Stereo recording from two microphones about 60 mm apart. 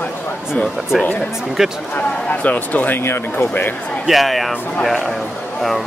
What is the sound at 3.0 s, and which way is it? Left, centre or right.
Speech, left.